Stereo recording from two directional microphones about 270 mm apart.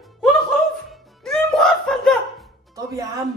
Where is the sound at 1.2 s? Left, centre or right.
Centre.